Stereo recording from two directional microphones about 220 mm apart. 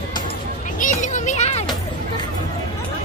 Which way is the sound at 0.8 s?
35° left (ahead or behind).